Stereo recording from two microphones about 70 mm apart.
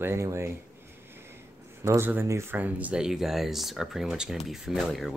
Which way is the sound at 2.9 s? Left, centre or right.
Centre.